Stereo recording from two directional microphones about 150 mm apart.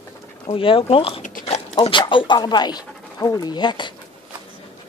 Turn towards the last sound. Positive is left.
turn(degrees=30)  # may be behind; listen again after turning